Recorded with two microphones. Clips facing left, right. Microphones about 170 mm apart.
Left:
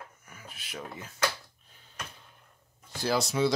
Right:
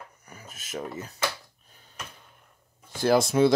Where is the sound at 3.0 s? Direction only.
50° right (ahead or behind).